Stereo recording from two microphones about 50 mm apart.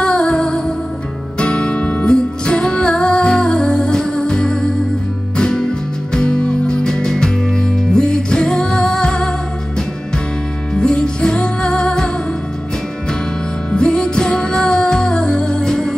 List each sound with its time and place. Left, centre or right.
0.0 s music: centre
10.7 s music: centre
13.7 s music: centre